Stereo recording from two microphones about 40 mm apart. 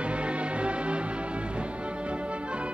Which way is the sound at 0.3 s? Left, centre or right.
Right.